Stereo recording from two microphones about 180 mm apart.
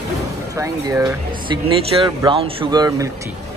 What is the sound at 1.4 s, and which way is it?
Speech, 30° right (ahead or behind).